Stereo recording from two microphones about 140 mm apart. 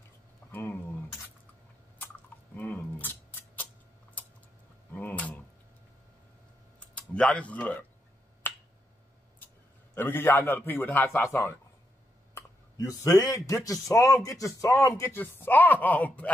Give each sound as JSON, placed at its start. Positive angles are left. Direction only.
{"t": 0.5, "sound": "a sound", "side_deg": 15}
{"t": 2.5, "sound": "scissors", "side_deg": 10}
{"t": 4.9, "sound": "a sound", "side_deg": 10}
{"t": 7.0, "sound": "speech", "side_deg": 10}
{"t": 8.4, "sound": "finger snapping", "side_deg": 15}
{"t": 9.9, "sound": "a man's voice", "side_deg": 15}